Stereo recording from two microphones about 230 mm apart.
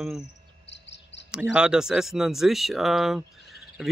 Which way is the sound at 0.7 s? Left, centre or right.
Left.